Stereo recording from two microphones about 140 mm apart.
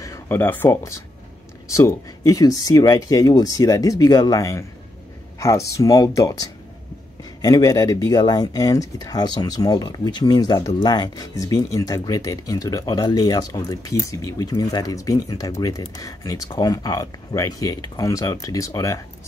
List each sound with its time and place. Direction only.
0.0 s speech: 20° left (ahead or behind)